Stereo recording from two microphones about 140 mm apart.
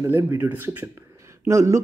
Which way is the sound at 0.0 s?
20° right (ahead or behind).